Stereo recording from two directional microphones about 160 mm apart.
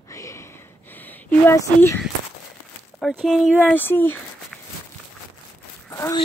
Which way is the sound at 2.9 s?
Centre (ahead or behind).